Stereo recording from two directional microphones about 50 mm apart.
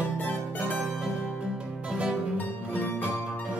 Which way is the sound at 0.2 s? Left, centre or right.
Left.